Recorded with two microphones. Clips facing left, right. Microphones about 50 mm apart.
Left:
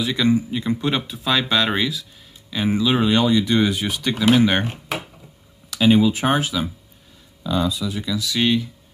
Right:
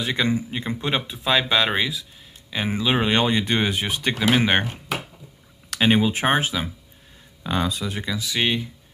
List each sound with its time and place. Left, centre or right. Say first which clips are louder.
0.0 s speech: left 4 dB; right
5.8 s speech: left 3 dB; right
7.4 s speech: left 2 dB; right; by 8.6 s centre